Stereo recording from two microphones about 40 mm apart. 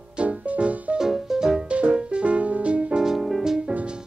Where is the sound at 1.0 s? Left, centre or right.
Centre.